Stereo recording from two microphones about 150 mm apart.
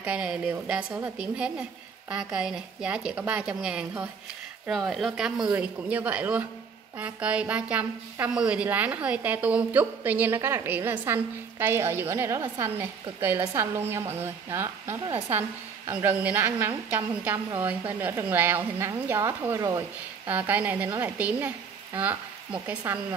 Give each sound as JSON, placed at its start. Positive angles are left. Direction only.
{"t": 0.0, "sound": "a woman's voice", "side_deg": -10}